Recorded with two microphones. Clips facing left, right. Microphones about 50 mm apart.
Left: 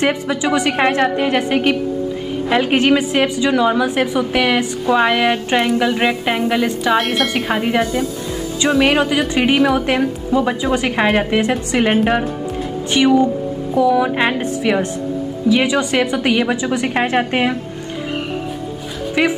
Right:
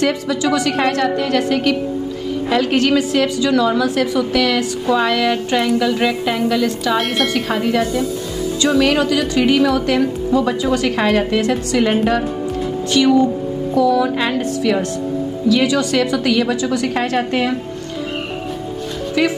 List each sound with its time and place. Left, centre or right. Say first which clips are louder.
0.0 s a woman's voice: even; left
7.0 s a woman's voice: left 1 dB; centre
7.3 s a woman's voice: even; left